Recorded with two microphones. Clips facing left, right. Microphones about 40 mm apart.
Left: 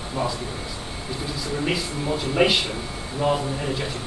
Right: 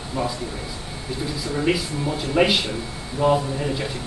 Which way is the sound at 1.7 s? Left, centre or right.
Centre.